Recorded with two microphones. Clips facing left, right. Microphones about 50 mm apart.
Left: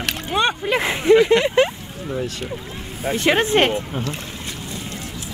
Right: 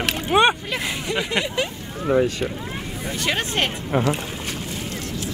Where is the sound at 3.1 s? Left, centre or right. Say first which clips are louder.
Left 8 dB; left.